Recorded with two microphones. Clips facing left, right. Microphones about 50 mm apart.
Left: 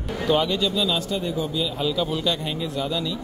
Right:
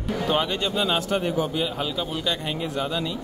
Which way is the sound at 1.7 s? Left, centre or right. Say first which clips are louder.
Left 4 dB; right.